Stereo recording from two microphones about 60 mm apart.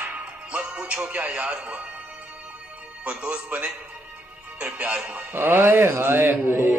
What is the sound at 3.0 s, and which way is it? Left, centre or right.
Speech, right.